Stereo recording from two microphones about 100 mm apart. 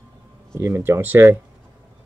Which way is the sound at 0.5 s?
25° right (ahead or behind).